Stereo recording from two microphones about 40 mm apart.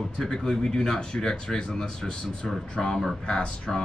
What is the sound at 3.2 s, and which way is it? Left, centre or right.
Speech, left.